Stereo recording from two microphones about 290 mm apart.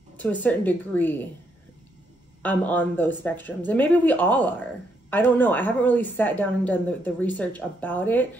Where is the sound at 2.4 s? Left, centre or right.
Centre.